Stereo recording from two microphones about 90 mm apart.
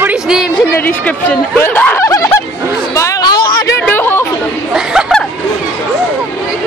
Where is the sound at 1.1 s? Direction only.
20° left (ahead or behind).